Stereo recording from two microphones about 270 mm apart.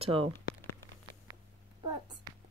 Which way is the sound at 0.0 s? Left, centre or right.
Centre.